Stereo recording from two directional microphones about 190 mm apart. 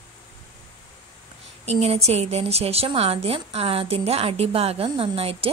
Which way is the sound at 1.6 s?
30° right (ahead or behind).